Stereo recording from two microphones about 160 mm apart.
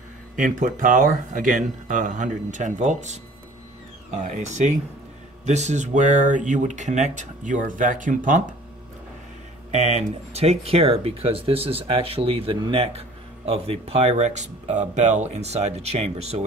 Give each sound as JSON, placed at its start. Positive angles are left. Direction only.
{"t": 0.4, "sound": "speech", "side_deg": -55}
{"t": 9.7, "sound": "speech", "side_deg": -45}